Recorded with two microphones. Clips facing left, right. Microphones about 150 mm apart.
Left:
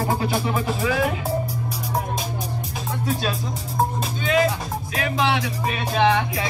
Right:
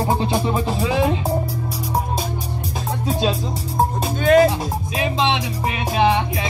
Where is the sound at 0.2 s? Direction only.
25° right (ahead or behind).